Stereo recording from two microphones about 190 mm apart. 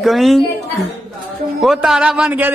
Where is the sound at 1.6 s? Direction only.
Centre (ahead or behind).